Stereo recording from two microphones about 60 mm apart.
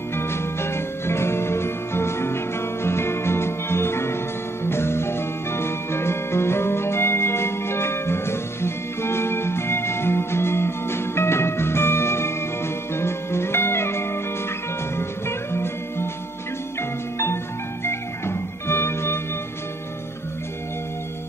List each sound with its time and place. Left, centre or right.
0.1 s music: left
17.8 s music: left